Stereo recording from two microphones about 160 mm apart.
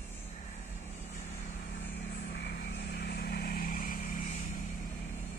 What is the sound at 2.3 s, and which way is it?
Vehicle, 90° left.